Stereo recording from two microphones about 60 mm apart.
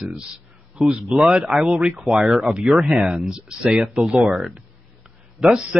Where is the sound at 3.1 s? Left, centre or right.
Centre.